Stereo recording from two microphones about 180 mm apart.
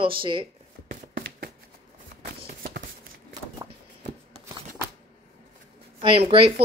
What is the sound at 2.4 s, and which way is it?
Shuffle, 55° right (ahead or behind).